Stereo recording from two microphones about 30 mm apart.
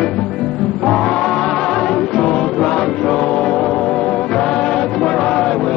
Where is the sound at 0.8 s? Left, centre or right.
Left.